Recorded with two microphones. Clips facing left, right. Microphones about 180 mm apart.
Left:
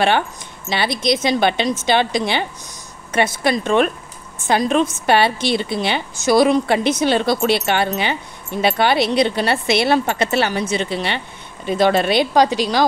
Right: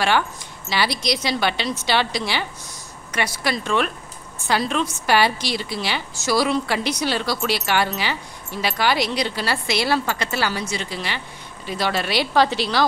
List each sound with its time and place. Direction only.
0.7 s a woman's voice: 25° left (ahead or behind)